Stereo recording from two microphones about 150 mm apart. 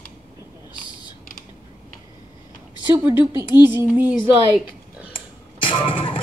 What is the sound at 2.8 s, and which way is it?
Speech, 10° right (ahead or behind).